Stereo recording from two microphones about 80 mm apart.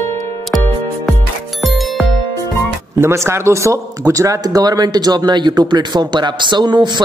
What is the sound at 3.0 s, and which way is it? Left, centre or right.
Speech, right.